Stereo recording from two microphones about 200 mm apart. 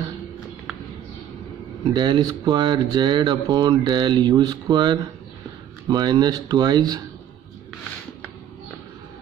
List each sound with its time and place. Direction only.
2.0 s speech: 20° right (ahead or behind)